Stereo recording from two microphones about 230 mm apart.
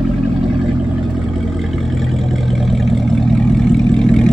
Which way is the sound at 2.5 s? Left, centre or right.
Centre.